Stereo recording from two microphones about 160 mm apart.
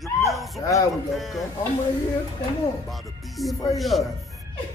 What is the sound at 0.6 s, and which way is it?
Speech, 20° left (ahead or behind).